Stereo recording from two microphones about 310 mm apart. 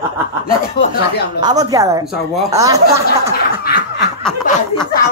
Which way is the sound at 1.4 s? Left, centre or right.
Centre.